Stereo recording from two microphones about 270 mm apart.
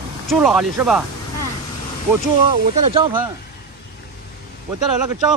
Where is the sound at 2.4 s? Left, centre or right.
Centre.